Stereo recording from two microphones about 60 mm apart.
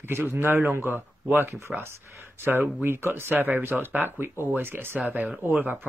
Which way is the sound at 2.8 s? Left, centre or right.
Right.